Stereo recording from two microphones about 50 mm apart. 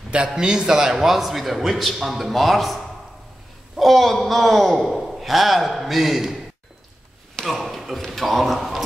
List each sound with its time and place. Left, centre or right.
0.4 s a man's voice: centre
7.4 s a man's voice: centre